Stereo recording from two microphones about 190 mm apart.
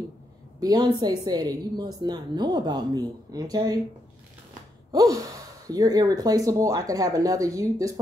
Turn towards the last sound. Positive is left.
turn(degrees=-15)  # may be behind; listen again after turning